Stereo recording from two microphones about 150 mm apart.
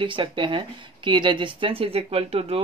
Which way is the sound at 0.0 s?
35° right (ahead or behind).